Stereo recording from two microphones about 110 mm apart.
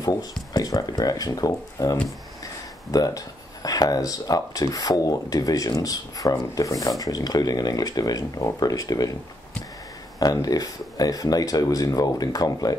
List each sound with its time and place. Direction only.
0.0 s speech: 35° left (ahead or behind)
10.1 s speech: 35° left (ahead or behind)